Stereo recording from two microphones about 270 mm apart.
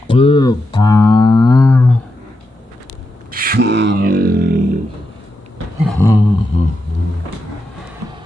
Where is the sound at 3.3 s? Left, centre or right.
Right.